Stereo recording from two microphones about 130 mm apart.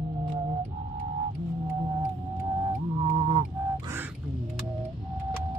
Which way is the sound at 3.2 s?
35° right (ahead or behind).